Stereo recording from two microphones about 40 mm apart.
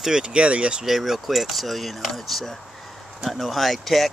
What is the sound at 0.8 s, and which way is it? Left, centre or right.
Speech, centre.